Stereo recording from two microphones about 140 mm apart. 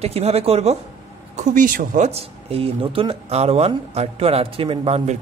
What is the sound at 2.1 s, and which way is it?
Speech, 45° right (ahead or behind).